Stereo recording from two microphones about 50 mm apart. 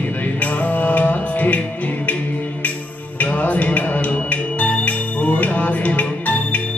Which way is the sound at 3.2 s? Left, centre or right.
Left.